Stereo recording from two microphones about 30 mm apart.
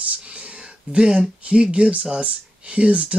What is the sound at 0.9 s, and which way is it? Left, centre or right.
Speech, right.